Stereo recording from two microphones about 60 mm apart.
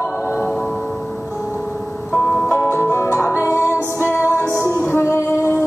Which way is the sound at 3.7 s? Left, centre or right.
Left.